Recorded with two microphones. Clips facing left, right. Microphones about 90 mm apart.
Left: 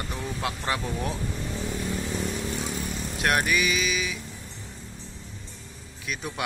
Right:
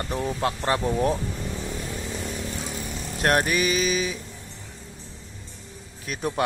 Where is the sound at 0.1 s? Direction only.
35° right (ahead or behind).